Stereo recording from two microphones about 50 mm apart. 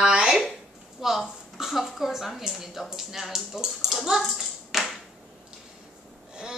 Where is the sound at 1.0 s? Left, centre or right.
Centre.